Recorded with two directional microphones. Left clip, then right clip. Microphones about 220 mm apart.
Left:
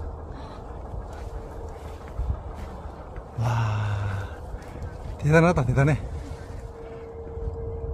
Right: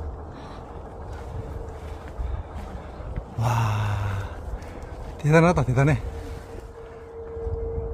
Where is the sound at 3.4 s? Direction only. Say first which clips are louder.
Right 3 dB; 15° right (ahead or behind).